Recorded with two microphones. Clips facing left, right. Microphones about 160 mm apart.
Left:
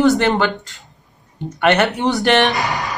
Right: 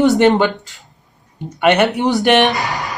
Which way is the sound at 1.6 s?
15° right (ahead or behind).